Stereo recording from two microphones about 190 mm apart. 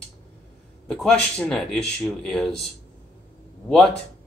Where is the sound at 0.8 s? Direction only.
5° left (ahead or behind).